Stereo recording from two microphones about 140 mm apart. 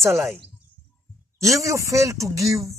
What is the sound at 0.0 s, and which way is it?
Speech, 20° right (ahead or behind).